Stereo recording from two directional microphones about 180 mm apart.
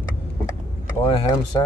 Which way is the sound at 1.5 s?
25° left (ahead or behind).